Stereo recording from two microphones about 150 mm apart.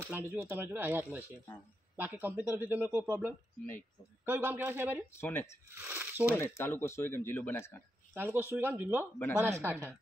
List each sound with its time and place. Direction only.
0.0 s speech: 15° right (ahead or behind)
5.2 s speech: 15° left (ahead or behind)
5.8 s speech: 15° right (ahead or behind)
6.5 s speech: 15° left (ahead or behind)
8.1 s speech: 15° right (ahead or behind)